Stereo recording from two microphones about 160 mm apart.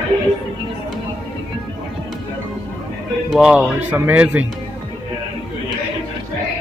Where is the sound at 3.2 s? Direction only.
5° right (ahead or behind).